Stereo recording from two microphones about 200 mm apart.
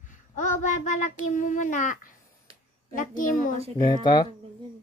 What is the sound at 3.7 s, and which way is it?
Speech, 20° left (ahead or behind).